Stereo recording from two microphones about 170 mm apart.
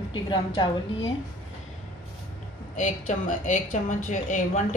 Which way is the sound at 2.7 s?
50° left (ahead or behind).